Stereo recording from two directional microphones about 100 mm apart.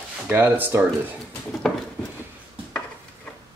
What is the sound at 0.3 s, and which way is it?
Speech, 20° right (ahead or behind).